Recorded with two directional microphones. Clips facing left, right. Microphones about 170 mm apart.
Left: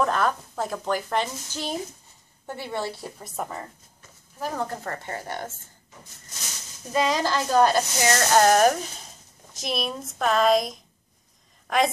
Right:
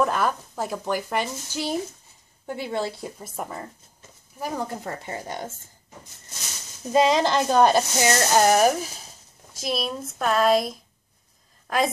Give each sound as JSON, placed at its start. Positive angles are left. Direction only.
{"t": 0.0, "sound": "a woman's voice", "side_deg": -5}
{"t": 3.2, "sound": "a woman's voice", "side_deg": -5}
{"t": 6.9, "sound": "speech", "side_deg": -25}
{"t": 11.6, "sound": "a sound", "side_deg": 0}